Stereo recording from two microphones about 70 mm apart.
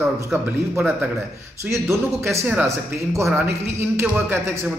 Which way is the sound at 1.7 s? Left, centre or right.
Right.